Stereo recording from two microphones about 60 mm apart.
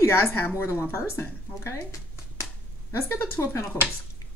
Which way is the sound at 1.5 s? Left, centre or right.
Left.